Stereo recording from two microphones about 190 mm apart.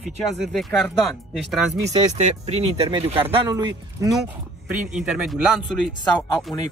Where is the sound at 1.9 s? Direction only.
40° right (ahead or behind).